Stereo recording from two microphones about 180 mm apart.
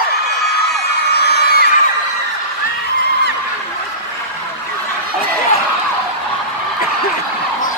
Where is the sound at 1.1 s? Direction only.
65° left (ahead or behind).